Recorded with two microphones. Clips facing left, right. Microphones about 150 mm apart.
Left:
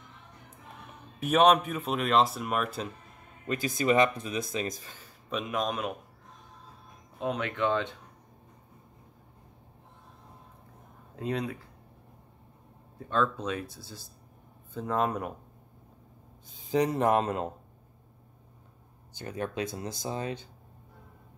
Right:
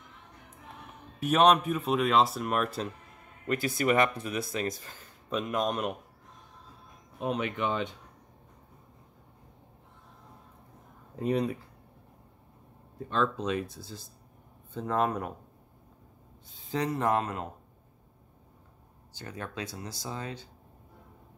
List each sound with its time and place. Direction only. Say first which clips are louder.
1.2 s speech: even; centre (ahead or behind)
3.4 s speech: even; 20° left (ahead or behind)
5.3 s speech: right 1 dB; centre (ahead or behind)
7.3 s speech: right 2 dB; 90° left
7.6 s speech: left 5 dB; 15° right (ahead or behind)
13.1 s speech: even; centre (ahead or behind)
16.7 s speech: left 3 dB; 20° left (ahead or behind)
19.1 s speech: left 5 dB; 20° left (ahead or behind)